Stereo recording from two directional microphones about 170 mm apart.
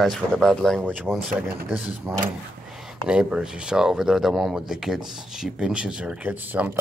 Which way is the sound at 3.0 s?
5° right (ahead or behind).